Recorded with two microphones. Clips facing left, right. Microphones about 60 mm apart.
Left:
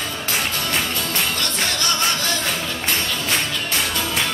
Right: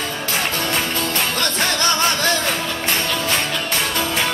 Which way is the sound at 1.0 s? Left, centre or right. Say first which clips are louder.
Right 3 dB; right.